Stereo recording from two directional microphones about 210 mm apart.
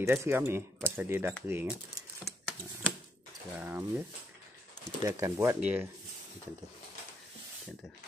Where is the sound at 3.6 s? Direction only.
10° right (ahead or behind).